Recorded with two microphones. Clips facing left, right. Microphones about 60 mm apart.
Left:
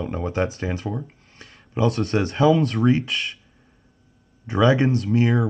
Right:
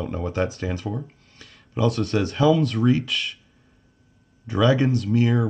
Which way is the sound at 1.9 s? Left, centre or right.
Left.